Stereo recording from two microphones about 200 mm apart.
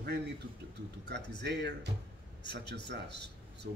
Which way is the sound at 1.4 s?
55° right (ahead or behind).